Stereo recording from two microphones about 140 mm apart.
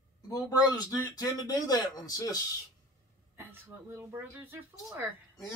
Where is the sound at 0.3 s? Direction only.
25° left (ahead or behind).